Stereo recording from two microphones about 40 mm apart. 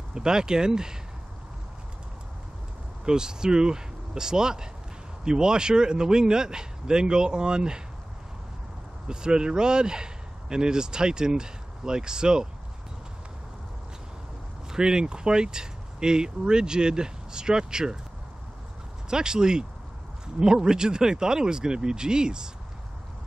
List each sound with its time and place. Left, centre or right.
0.1 s speech: centre
3.1 s speech: centre
9.0 s speech: right
14.7 s speech: centre
19.0 s speech: centre